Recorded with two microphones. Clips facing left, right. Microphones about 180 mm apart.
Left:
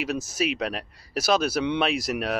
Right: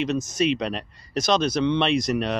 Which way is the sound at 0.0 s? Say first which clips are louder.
Right 4 dB; 5° left (ahead or behind).